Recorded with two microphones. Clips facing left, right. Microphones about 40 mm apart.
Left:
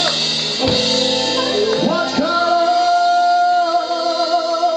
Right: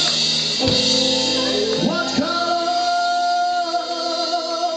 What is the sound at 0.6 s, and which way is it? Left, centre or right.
Music, centre.